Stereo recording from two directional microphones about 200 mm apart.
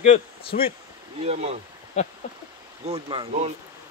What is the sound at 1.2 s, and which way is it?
Speech, 35° right (ahead or behind).